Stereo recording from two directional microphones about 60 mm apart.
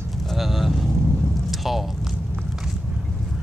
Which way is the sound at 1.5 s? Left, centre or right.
Centre.